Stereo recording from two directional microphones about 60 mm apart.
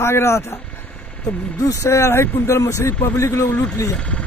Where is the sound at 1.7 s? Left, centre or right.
Left.